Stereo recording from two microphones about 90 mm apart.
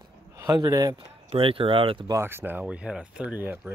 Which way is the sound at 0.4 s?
45° right (ahead or behind).